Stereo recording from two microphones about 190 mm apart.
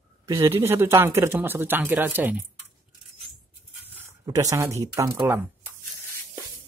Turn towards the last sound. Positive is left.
turn(degrees=-15)  # may be behind; listen again after turning